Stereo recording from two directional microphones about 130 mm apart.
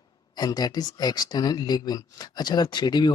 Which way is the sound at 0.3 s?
30° left (ahead or behind).